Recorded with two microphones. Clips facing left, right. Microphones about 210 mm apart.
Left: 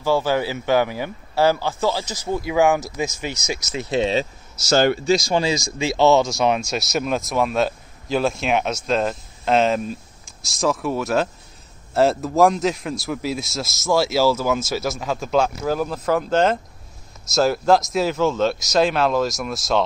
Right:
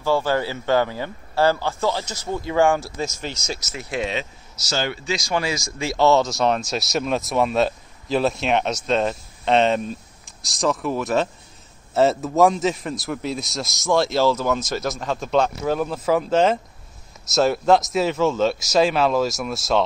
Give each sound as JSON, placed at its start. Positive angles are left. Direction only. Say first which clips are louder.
{"t": 0.0, "sound": "speech", "louder": "left 1 dB", "side_deg": 15}
{"t": 3.9, "sound": "speech", "louder": "left 6 dB", "side_deg": 30}
{"t": 4.6, "sound": "speech", "louder": "left 9 dB", "side_deg": 45}
{"t": 5.5, "sound": "speech", "louder": "left 4 dB", "side_deg": 20}
{"t": 6.6, "sound": "a man's voice", "louder": "left 1 dB", "side_deg": 0}